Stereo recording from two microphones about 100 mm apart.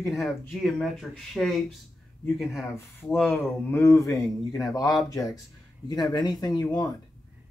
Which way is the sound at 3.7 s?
30° left (ahead or behind).